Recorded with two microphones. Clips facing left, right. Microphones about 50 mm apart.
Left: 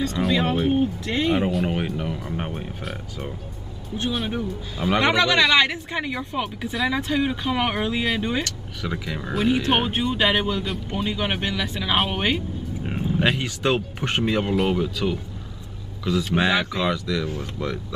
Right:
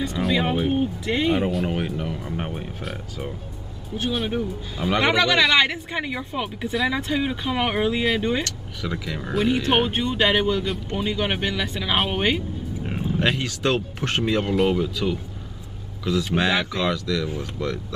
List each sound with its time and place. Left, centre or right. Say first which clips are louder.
0.2 s a man's voice: even; centre